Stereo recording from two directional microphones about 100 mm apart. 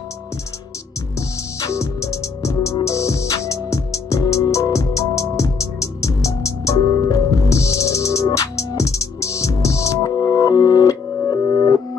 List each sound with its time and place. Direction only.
1.6 s music: 30° left (ahead or behind)